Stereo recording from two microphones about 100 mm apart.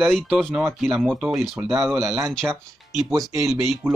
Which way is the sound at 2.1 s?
25° right (ahead or behind).